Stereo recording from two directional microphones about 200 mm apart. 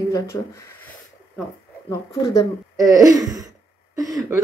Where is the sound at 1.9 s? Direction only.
15° left (ahead or behind).